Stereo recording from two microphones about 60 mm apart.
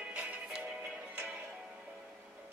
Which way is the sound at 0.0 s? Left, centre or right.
Right.